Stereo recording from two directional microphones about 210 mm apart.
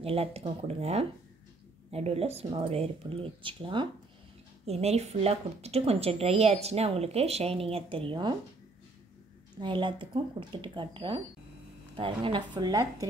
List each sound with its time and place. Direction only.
0.0 s a woman's voice: 30° right (ahead or behind)
9.6 s a woman's voice: 25° right (ahead or behind)